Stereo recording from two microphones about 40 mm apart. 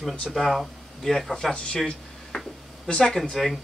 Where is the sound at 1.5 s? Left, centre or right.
Left.